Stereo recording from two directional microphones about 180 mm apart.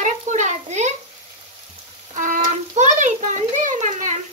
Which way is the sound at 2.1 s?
45° right (ahead or behind).